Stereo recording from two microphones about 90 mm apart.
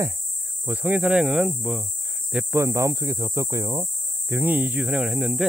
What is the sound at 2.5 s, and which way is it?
Speech, 35° right (ahead or behind).